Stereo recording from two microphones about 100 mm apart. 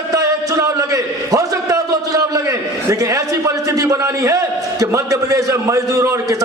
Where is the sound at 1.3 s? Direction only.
35° right (ahead or behind).